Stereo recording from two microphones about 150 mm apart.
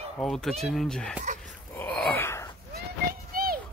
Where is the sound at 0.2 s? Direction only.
Centre (ahead or behind).